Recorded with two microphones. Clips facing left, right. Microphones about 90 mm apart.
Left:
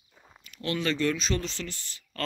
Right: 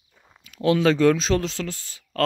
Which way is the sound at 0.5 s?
90° right.